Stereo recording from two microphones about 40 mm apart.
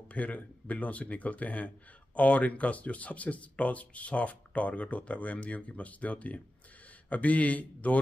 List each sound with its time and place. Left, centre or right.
0.1 s speech: left